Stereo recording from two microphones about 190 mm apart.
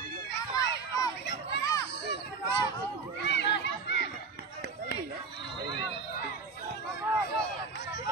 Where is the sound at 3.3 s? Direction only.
65° left (ahead or behind).